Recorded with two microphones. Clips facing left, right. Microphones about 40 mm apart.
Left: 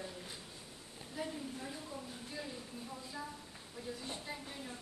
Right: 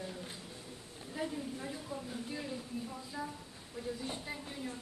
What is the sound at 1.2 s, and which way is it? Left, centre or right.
Speech, centre.